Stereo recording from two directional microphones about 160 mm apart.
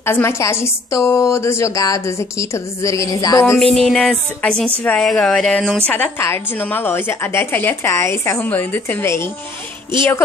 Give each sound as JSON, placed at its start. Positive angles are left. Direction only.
{"t": 0.0, "sound": "a woman's voice", "side_deg": 15}
{"t": 3.7, "sound": "music", "side_deg": 0}
{"t": 5.9, "sound": "a woman's voice", "side_deg": 10}